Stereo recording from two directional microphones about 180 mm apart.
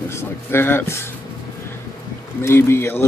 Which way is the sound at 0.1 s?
15° left (ahead or behind).